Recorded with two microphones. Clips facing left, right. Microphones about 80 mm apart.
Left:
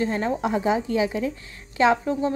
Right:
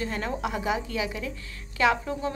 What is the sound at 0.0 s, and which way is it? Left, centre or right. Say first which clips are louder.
Speech: left 6 dB; left.